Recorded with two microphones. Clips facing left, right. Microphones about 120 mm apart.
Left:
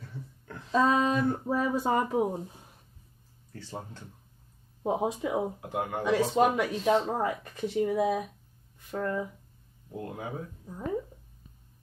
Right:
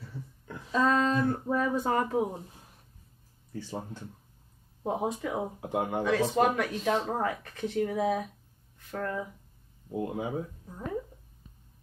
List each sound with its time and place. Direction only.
0.7 s speech: 15° left (ahead or behind)
3.5 s speech: 10° right (ahead or behind)
4.8 s speech: 10° left (ahead or behind)
5.6 s speech: 20° right (ahead or behind)
6.0 s speech: 15° left (ahead or behind)
9.8 s speech: 15° right (ahead or behind)